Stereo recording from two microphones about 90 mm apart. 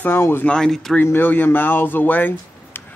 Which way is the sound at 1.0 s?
25° left (ahead or behind).